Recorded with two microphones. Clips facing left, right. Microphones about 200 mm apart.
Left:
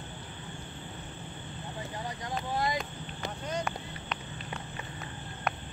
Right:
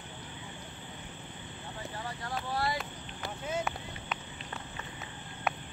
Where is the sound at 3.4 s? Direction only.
5° right (ahead or behind).